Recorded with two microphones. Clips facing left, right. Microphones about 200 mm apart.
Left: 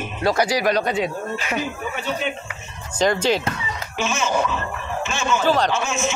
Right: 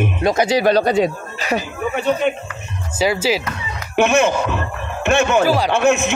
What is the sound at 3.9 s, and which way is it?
A man's voice, 60° right (ahead or behind).